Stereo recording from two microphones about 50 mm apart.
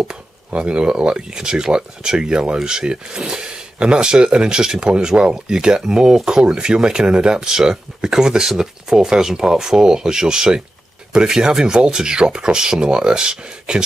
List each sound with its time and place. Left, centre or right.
0.1 s speech: right